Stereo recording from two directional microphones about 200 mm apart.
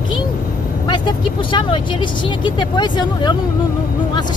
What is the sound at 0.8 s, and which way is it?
Speech, 20° left (ahead or behind).